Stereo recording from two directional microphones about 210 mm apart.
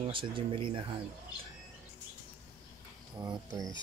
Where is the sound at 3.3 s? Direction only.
15° right (ahead or behind).